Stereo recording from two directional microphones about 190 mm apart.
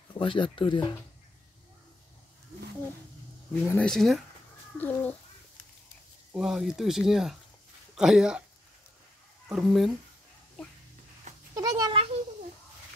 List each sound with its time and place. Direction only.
0.2 s speech: 25° left (ahead or behind)
3.6 s speech: 5° left (ahead or behind)
6.3 s speech: centre (ahead or behind)
9.5 s speech: centre (ahead or behind)
11.5 s cat: 20° right (ahead or behind)